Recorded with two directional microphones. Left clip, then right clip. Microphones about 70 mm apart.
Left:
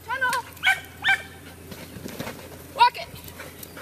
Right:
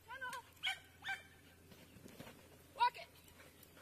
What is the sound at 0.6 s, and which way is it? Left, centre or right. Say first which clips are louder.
Dog: left 18 dB; right.